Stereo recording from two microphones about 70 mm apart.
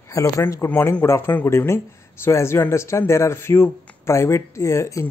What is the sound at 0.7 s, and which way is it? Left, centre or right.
Speech, left.